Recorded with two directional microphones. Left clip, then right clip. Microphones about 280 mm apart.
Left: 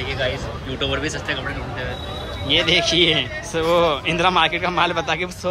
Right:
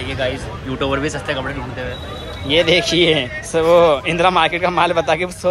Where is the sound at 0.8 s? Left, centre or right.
Centre.